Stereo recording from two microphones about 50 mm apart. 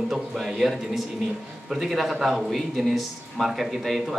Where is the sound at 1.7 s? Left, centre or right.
Centre.